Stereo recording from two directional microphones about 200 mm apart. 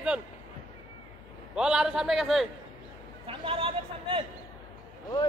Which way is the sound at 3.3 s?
25° right (ahead or behind).